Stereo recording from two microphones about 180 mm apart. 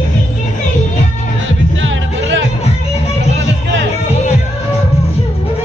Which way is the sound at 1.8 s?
90° right.